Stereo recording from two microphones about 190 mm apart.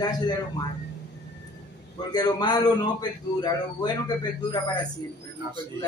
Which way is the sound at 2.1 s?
20° left (ahead or behind).